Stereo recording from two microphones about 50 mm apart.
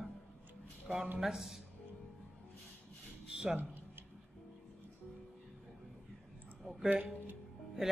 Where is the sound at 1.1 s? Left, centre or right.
Centre.